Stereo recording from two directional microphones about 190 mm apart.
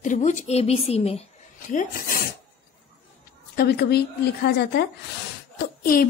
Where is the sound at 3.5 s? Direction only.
55° left (ahead or behind).